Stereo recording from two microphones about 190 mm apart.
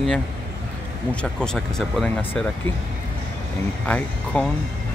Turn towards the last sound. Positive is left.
turn(degrees=5)  # may be behind; listen again after turning